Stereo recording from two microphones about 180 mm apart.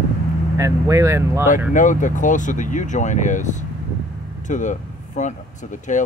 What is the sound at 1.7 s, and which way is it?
Speech, 45° left (ahead or behind).